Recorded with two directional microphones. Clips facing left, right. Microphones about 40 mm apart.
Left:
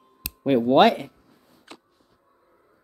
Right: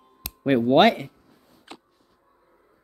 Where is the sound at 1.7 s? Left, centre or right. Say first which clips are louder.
Right 2 dB; centre.